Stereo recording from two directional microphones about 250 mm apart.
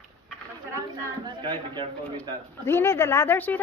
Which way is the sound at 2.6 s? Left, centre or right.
Centre.